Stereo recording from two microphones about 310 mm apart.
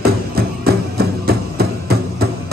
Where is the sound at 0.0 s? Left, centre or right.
Right.